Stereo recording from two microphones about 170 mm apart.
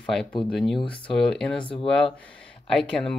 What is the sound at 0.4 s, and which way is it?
Speech, centre (ahead or behind).